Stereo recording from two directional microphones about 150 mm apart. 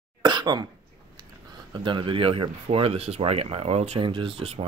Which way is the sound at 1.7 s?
30° right (ahead or behind).